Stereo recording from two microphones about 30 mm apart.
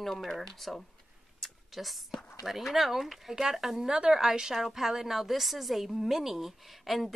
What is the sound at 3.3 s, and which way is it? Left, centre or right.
Speech, centre.